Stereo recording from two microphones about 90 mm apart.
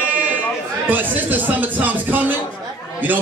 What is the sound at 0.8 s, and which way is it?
A man's voice, 20° right (ahead or behind).